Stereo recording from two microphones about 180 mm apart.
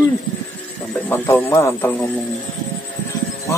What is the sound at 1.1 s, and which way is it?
Speech, 15° left (ahead or behind).